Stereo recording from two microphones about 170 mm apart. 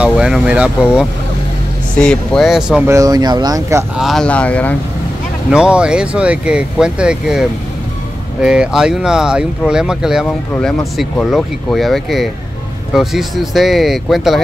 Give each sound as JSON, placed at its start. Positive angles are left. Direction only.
{"t": 0.0, "sound": "speech", "side_deg": -5}
{"t": 2.9, "sound": "speech", "side_deg": -20}
{"t": 3.9, "sound": "speech", "side_deg": 0}
{"t": 5.5, "sound": "speech", "side_deg": -5}
{"t": 10.5, "sound": "speech", "side_deg": 15}
{"t": 11.0, "sound": "speech", "side_deg": 0}